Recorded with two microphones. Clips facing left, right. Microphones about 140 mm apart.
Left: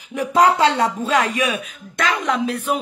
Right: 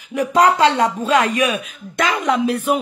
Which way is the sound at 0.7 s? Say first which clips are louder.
Right 2 dB; 25° right (ahead or behind).